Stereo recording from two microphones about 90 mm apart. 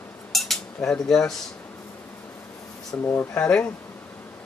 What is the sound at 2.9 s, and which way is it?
Speech, 20° left (ahead or behind).